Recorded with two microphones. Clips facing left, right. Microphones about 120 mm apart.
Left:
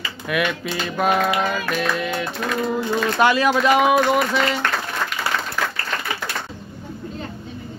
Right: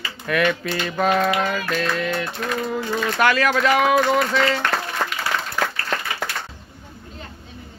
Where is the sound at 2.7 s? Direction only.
20° left (ahead or behind).